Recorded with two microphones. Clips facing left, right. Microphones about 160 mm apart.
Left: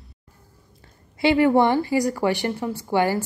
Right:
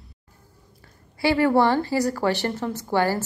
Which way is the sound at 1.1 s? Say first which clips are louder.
Left 2 dB; 20° left (ahead or behind).